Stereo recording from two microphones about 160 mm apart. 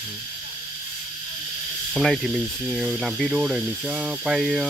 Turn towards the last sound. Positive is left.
turn(degrees=0)  # may be behind; listen again after turning